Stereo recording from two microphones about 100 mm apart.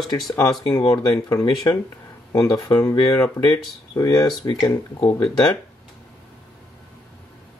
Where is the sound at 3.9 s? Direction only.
40° left (ahead or behind).